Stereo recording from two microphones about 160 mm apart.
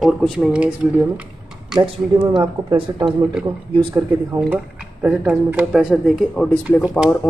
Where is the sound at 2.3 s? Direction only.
30° right (ahead or behind).